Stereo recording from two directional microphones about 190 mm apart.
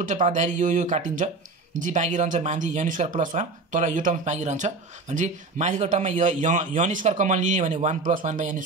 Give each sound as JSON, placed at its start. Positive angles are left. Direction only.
{"t": 0.0, "sound": "speech", "side_deg": -40}